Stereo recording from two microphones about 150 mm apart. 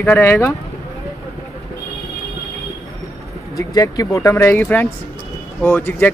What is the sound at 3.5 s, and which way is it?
Speech, 25° left (ahead or behind).